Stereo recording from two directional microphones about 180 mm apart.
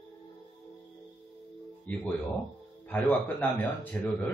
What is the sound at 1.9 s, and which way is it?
Speech, 5° left (ahead or behind).